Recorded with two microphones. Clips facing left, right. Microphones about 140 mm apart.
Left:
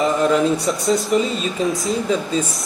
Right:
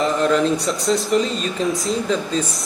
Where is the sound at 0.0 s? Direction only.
5° left (ahead or behind).